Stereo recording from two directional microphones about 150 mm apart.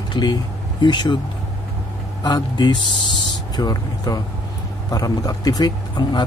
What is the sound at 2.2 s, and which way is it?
Speech, 25° left (ahead or behind).